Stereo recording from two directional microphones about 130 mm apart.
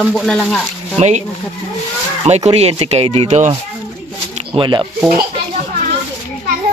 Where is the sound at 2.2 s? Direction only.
55° right (ahead or behind).